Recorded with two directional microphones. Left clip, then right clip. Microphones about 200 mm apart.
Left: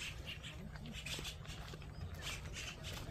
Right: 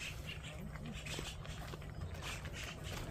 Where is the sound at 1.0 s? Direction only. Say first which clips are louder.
Left 1 dB; 50° left (ahead or behind).